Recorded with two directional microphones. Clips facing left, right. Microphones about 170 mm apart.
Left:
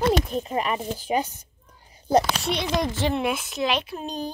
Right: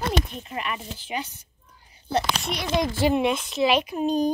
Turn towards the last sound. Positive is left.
turn(degrees=-10)  # may be behind; listen again after turning